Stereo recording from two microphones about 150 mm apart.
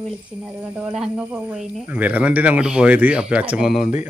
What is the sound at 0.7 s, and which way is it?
Speech, 5° right (ahead or behind).